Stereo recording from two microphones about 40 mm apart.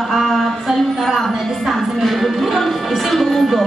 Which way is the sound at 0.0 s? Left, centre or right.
Centre.